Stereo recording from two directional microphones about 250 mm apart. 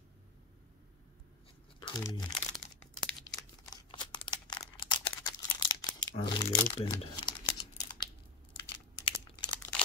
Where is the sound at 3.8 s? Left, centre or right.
Centre.